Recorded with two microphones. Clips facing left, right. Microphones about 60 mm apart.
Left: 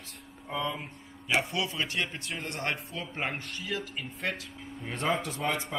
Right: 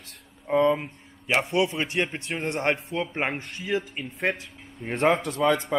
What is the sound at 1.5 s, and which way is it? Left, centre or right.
Speech, right.